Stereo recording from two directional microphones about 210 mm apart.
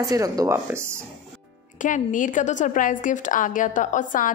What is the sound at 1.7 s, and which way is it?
A woman's voice, 35° left (ahead or behind).